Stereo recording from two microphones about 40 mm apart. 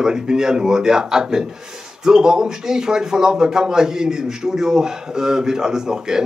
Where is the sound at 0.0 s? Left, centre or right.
Centre.